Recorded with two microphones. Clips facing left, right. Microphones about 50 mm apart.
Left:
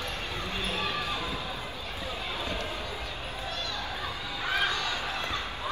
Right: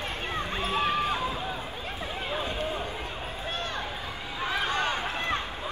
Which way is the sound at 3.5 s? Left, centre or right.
Right.